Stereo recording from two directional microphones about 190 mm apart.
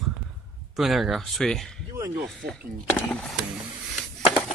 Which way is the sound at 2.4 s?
55° right (ahead or behind).